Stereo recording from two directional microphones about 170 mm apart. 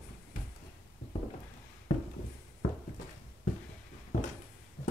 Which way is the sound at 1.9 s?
45° left (ahead or behind).